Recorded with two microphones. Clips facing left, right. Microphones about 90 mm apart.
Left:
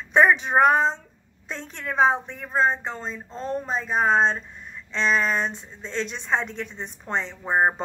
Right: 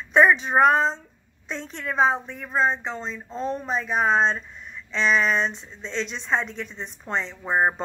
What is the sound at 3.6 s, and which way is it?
Speech, 35° left (ahead or behind).